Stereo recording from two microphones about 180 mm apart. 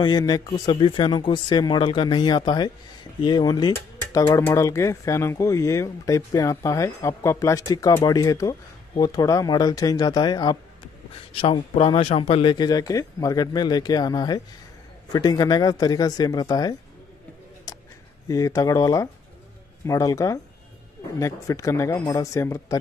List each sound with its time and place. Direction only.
0.0 s speech: 25° left (ahead or behind)
17.7 s a sound: 20° left (ahead or behind)
18.3 s speech: 20° left (ahead or behind)